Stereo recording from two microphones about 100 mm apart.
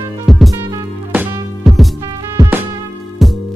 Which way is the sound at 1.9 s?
35° right (ahead or behind).